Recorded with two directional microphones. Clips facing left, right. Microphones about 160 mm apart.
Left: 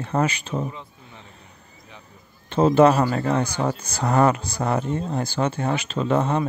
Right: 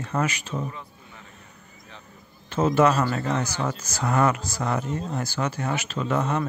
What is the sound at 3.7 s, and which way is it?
Speech, 60° left (ahead or behind).